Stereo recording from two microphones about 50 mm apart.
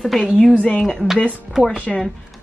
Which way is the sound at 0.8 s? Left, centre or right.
Centre.